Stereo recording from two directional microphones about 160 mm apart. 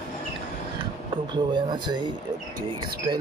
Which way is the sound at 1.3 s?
30° right (ahead or behind).